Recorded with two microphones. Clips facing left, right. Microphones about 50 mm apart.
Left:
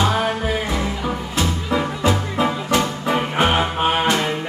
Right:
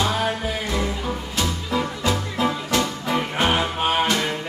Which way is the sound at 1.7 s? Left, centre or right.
Centre.